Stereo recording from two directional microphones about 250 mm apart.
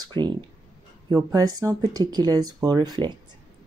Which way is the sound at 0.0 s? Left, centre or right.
Centre.